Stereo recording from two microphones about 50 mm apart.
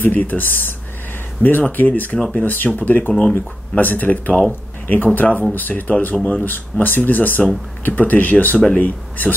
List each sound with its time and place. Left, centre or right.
0.0 s speech: left
6.1 s speech: centre
6.4 s speech: left